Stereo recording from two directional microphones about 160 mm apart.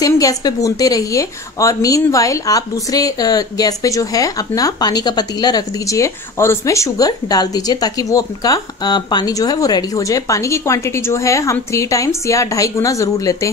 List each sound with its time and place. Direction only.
0.0 s a woman's voice: 20° left (ahead or behind)